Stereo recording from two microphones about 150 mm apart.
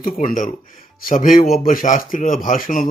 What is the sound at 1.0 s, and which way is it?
Speech, 60° left (ahead or behind).